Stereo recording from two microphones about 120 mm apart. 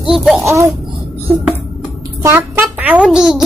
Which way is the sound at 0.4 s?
25° right (ahead or behind).